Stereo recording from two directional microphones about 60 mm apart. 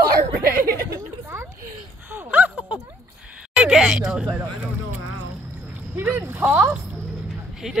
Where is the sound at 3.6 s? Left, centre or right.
Centre.